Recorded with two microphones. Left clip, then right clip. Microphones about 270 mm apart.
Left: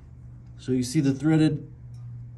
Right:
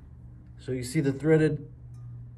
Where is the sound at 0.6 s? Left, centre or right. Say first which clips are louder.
Left 5 dB; centre.